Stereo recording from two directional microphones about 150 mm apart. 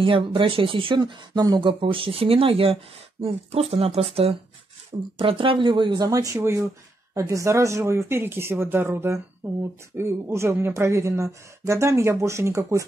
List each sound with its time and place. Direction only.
0.0 s speech: 35° right (ahead or behind); by 12.8 s 20° right (ahead or behind)